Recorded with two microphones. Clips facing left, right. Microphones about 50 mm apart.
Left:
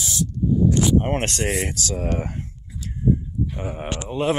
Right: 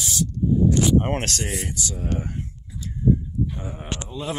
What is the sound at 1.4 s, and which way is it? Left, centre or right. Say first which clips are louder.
Speech: left 6 dB; left.